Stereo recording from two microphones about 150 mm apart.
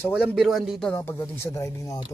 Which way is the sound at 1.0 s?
15° left (ahead or behind).